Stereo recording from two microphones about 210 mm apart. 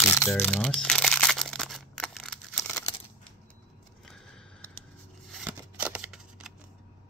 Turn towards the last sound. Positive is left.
turn(degrees=-5)  # may be behind; listen again after turning